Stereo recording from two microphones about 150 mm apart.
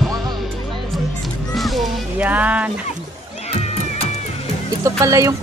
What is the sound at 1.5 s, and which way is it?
Music, centre (ahead or behind).